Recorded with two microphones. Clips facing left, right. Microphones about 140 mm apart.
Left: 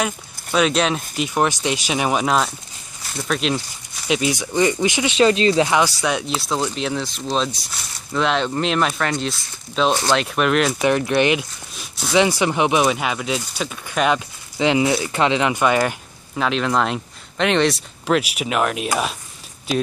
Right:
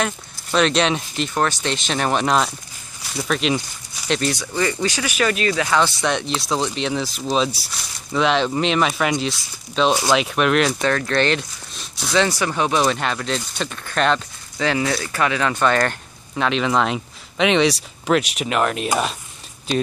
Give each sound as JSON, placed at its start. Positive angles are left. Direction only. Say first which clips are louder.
{"t": 0.0, "sound": "speech", "louder": "even", "side_deg": 5}
{"t": 5.8, "sound": "speech", "louder": "even", "side_deg": 10}
{"t": 10.8, "sound": "speech", "louder": "left 2 dB", "side_deg": 15}